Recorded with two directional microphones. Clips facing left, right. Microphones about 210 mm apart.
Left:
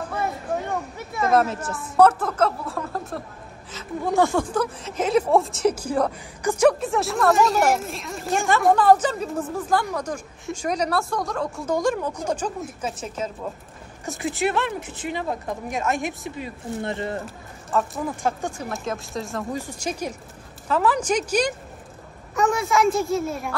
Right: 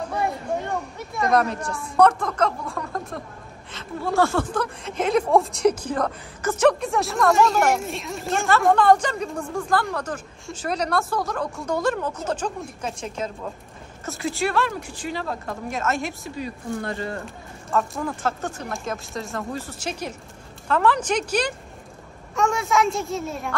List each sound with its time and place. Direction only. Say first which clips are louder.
0.1 s a sound: right 1 dB; centre (ahead or behind)
1.1 s speech: left 1 dB; 5° left (ahead or behind)
3.7 s speech: left 1 dB; 15° left (ahead or behind); by 11.7 s centre (ahead or behind)
11.7 s speech: left 1 dB; 10° left (ahead or behind)
14.0 s speech: left 1 dB; 20° left (ahead or behind)
17.6 s speech: even; centre (ahead or behind)
19.5 s speech: left 2 dB; 10° left (ahead or behind)